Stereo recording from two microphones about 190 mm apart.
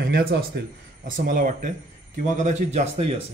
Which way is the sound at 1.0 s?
45° right (ahead or behind).